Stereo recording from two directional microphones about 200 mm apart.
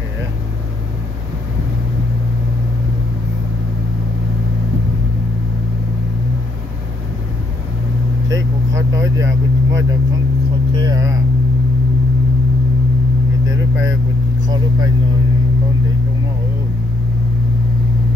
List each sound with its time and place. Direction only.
8.3 s vehicle: 15° right (ahead or behind)
13.5 s vehicle: 15° right (ahead or behind)